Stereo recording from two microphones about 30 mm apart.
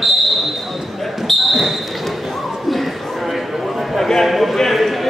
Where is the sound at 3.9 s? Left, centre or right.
Centre.